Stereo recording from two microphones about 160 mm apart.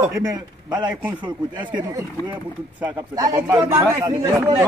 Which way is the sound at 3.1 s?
20° right (ahead or behind).